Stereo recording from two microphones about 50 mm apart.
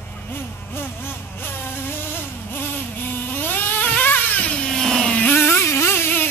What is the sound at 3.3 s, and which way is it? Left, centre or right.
Vehicle, left.